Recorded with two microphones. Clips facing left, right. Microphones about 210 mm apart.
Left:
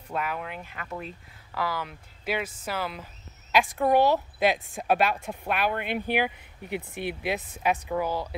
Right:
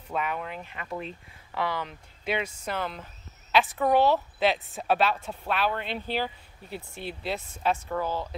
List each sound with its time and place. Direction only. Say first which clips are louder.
0.1 s a woman's voice: right 1 dB; 5° left (ahead or behind)